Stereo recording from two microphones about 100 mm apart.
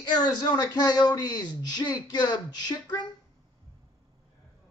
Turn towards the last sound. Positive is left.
turn(degrees=45)  # may be behind; listen again after turning